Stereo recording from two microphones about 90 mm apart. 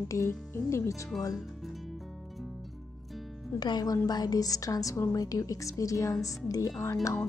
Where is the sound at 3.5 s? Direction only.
50° left (ahead or behind).